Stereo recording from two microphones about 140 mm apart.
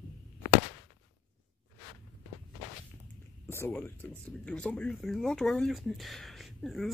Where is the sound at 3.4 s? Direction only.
20° left (ahead or behind).